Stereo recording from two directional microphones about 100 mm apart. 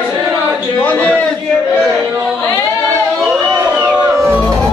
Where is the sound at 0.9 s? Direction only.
15° left (ahead or behind).